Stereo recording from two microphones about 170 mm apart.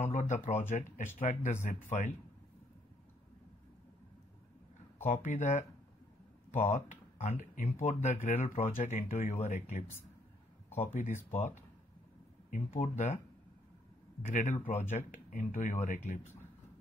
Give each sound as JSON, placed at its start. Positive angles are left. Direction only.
{"t": 0.1, "sound": "speech", "side_deg": 45}
{"t": 5.0, "sound": "speech", "side_deg": 50}
{"t": 10.9, "sound": "speech", "side_deg": 45}
{"t": 14.2, "sound": "speech", "side_deg": 50}